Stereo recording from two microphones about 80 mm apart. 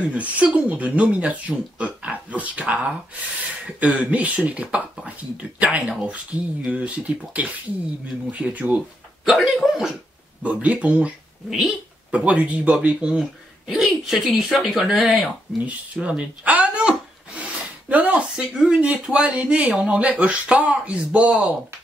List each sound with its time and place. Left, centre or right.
0.1 s speech: centre
9.2 s speech: centre
10.4 s speech: centre
15.5 s speech: centre